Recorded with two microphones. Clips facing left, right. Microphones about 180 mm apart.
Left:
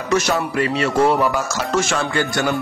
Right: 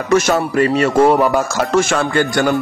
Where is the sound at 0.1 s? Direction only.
45° right (ahead or behind).